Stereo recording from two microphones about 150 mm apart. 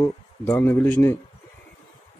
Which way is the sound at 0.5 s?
15° left (ahead or behind).